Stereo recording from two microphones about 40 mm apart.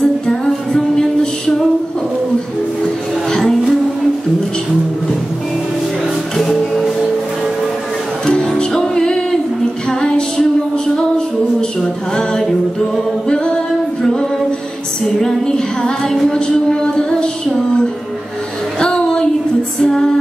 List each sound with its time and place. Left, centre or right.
0.3 s music: centre
3.3 s music: centre
6.3 s music: centre
8.3 s music: centre
11.8 s music: centre
15.1 s music: centre
18.8 s a sound: left
19.8 s music: centre